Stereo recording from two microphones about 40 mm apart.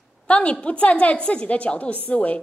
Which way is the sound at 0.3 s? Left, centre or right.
Left.